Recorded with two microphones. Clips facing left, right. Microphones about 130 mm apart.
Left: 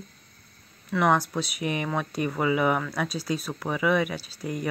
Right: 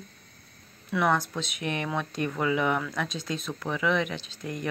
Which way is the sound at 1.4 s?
5° left (ahead or behind).